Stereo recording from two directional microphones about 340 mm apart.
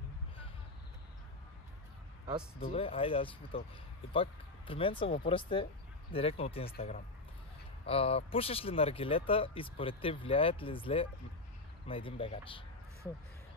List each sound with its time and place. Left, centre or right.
2.6 s speech: centre